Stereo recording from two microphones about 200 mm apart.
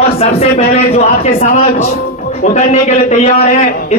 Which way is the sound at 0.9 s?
35° left (ahead or behind).